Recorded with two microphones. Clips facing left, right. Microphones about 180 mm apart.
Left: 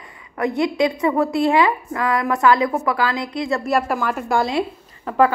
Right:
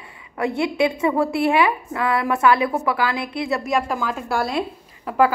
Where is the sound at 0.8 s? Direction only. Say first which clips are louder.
Left 1 dB; 20° right (ahead or behind).